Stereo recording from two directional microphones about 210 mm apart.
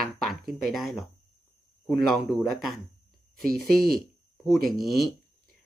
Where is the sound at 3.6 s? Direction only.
45° right (ahead or behind).